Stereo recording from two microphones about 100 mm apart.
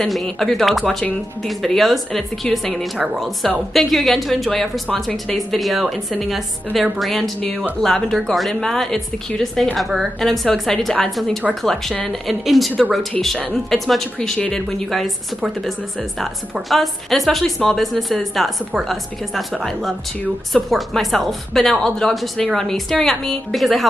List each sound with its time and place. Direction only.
0.0 s a woman's voice: 5° left (ahead or behind)